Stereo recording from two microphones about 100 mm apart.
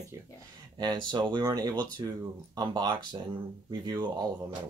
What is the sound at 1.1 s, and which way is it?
Speech, 45° right (ahead or behind).